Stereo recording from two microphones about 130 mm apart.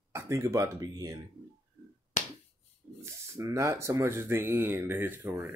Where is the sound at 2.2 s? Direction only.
70° left (ahead or behind).